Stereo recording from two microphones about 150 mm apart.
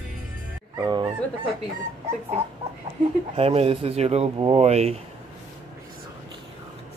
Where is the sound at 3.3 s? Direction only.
40° right (ahead or behind).